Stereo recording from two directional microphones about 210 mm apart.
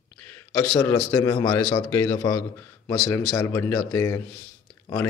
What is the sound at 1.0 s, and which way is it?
Speech, 15° left (ahead or behind).